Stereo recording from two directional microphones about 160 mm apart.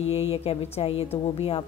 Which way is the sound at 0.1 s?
40° left (ahead or behind).